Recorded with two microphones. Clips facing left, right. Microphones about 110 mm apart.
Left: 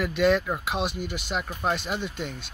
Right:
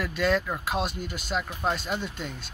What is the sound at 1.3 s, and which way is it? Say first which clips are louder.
Speech: even; 10° left (ahead or behind).